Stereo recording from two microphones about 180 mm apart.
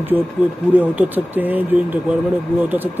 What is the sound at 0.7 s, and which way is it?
Speech, 10° right (ahead or behind).